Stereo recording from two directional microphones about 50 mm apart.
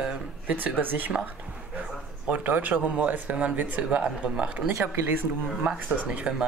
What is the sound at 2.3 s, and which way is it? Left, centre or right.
Speech, right.